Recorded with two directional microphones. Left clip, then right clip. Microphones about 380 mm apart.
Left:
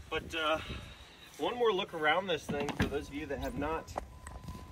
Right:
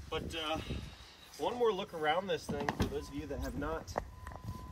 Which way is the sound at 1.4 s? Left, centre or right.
Centre.